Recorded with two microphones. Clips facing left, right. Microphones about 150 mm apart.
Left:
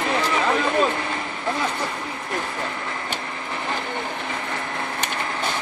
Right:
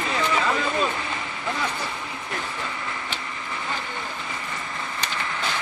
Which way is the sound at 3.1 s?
45° left (ahead or behind).